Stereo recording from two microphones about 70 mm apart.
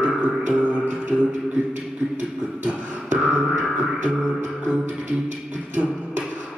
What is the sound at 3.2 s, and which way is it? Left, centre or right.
Beatboxing, centre.